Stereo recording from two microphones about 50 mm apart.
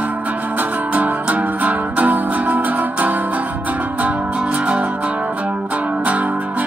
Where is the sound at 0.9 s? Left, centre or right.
Right.